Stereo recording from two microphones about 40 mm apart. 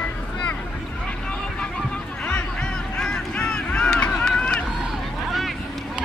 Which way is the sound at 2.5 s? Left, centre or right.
Left.